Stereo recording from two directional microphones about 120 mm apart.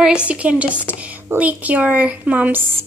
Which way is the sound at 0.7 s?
15° left (ahead or behind).